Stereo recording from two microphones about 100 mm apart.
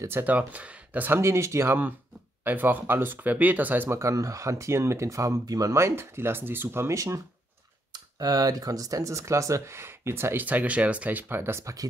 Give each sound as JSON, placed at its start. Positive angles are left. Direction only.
{"t": 0.0, "sound": "speech", "side_deg": -20}
{"t": 7.9, "sound": "speech", "side_deg": -40}